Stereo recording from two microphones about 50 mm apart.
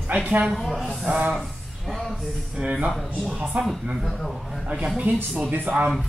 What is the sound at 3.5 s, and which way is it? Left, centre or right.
Speech, right.